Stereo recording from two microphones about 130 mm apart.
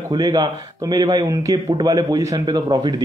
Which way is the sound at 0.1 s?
30° right (ahead or behind).